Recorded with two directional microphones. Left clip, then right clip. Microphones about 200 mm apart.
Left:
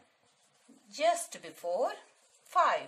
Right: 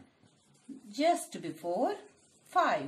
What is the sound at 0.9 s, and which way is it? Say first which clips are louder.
A woman's voice: even; 35° left (ahead or behind).